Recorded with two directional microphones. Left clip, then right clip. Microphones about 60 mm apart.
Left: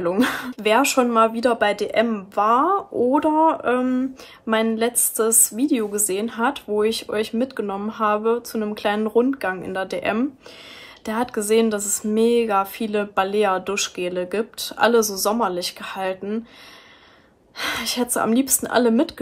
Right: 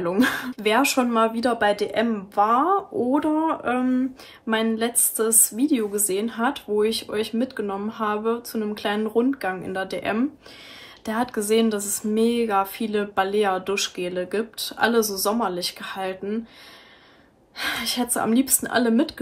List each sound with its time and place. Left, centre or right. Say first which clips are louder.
0.0 s a woman's voice: left 1 dB; left
17.6 s a woman's voice: left 2 dB; left